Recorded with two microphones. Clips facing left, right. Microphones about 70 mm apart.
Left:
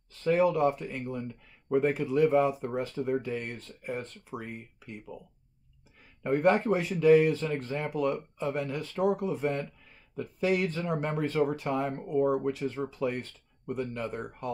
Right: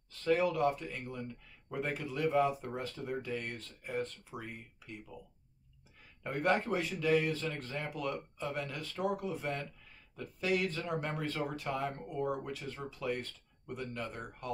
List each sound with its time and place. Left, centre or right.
0.2 s speech: left